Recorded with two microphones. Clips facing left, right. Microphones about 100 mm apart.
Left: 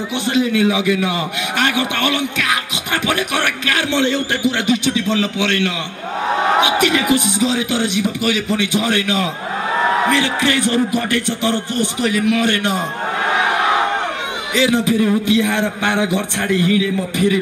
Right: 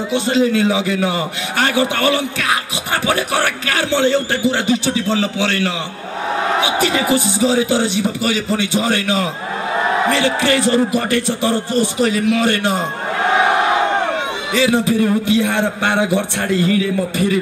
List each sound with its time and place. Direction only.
0.1 s a man's voice: 30° right (ahead or behind)
6.8 s a man's voice: 30° right (ahead or behind)
14.7 s a man's voice: 30° right (ahead or behind)